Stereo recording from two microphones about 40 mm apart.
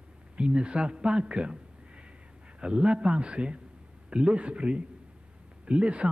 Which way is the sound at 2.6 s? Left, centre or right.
Right.